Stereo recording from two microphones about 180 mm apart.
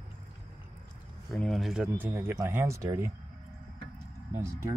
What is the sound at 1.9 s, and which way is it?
Speech, 15° right (ahead or behind).